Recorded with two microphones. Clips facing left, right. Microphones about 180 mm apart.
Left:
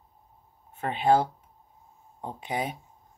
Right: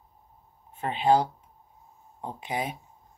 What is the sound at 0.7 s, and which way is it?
Speech, 50° left (ahead or behind).